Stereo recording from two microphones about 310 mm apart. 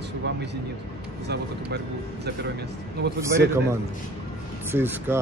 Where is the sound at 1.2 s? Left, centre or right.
Right.